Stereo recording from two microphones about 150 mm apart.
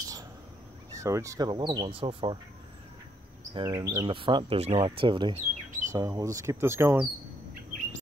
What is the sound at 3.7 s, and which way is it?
Speech, 20° right (ahead or behind).